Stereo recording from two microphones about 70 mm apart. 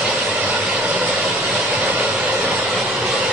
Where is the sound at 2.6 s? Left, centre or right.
Centre.